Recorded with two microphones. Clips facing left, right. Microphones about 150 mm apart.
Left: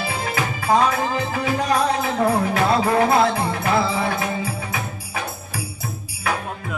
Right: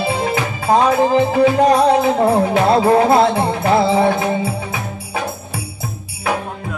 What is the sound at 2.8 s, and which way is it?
Music, 30° right (ahead or behind).